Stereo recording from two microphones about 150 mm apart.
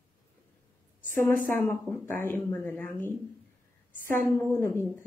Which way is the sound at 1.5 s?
15° left (ahead or behind).